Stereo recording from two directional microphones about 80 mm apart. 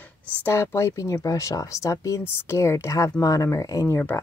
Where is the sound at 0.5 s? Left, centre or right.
Left.